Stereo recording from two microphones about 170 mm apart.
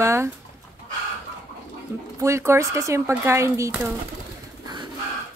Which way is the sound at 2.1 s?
15° right (ahead or behind).